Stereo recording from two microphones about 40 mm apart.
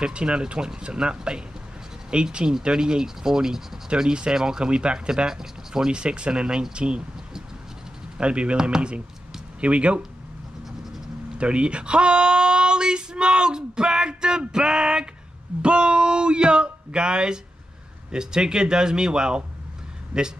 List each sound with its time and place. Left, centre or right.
0.0 s speech: right
8.2 s speech: right
9.6 s speech: right
11.3 s speech: right